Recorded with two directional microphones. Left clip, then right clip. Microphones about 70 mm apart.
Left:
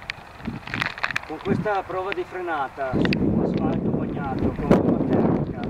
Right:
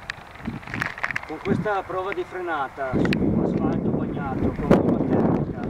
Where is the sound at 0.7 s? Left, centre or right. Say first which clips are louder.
Left 1 dB; centre.